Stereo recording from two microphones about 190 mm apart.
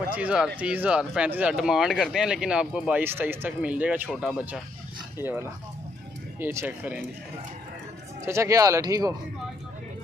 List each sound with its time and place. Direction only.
0.1 s speech: 5° right (ahead or behind)
8.3 s speech: 15° right (ahead or behind)